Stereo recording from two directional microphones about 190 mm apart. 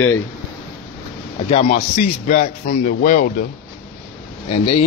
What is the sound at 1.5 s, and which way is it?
A man's voice, 30° left (ahead or behind).